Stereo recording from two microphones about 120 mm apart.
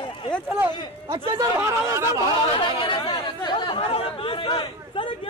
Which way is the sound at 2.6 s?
45° left (ahead or behind).